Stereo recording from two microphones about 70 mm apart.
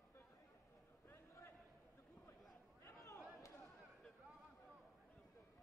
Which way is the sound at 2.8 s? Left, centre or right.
Left.